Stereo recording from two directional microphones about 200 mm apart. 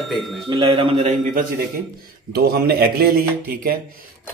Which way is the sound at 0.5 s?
25° right (ahead or behind).